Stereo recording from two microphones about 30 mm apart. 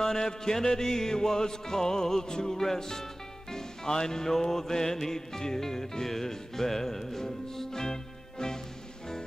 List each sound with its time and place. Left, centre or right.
0.0 s music: centre